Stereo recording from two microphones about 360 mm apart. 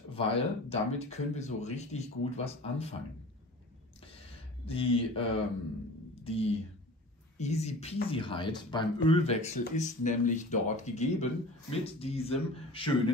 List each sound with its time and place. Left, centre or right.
0.1 s speech: centre
4.6 s speech: centre
6.2 s speech: centre